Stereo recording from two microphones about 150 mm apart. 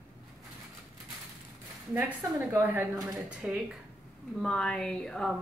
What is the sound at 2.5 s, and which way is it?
Speech, 15° right (ahead or behind).